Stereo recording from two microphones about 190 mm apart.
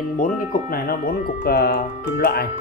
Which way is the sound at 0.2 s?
50° left (ahead or behind).